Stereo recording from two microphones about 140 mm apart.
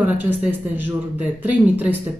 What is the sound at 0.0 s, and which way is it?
Speech, 15° right (ahead or behind).